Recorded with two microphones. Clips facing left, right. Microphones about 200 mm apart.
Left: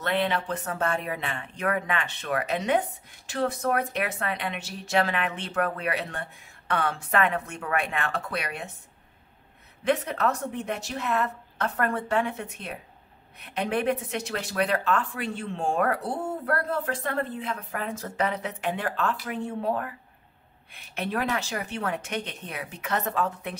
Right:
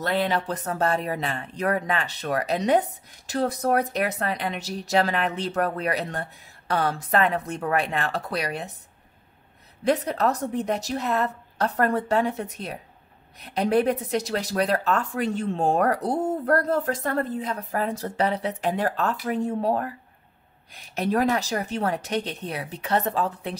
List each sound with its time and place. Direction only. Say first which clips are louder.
0.0 s speech: right 2 dB; 40° right (ahead or behind)
9.8 s speech: right 3 dB; 35° right (ahead or behind)